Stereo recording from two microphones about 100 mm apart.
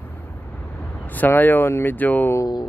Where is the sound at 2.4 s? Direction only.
45° left (ahead or behind).